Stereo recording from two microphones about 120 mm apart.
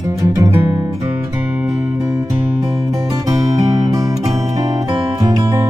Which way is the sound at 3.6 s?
30° right (ahead or behind).